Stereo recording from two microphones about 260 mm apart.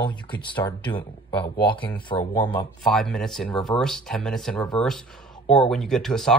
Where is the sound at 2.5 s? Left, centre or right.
Centre.